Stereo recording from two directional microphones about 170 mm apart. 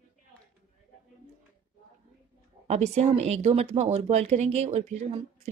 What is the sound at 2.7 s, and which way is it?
Speech, 40° right (ahead or behind).